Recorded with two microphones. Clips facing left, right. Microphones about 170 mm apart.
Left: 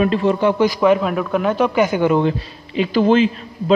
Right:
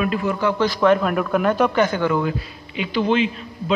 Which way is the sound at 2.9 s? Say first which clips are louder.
Left 5 dB; 40° left (ahead or behind).